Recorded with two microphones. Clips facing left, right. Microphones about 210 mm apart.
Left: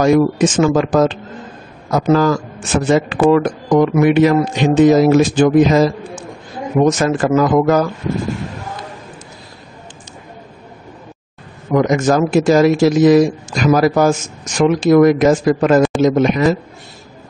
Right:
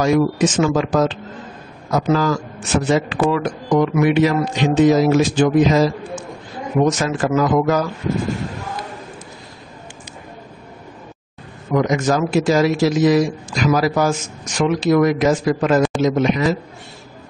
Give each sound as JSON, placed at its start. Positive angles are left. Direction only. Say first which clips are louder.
{"t": 0.0, "sound": "speech", "louder": "left 4 dB", "side_deg": 55}
{"t": 11.7, "sound": "speech", "louder": "left 4 dB", "side_deg": 50}